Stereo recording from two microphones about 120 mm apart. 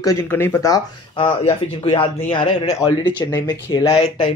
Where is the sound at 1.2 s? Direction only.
45° left (ahead or behind).